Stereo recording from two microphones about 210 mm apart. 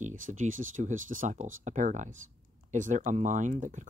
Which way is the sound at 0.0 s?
35° right (ahead or behind).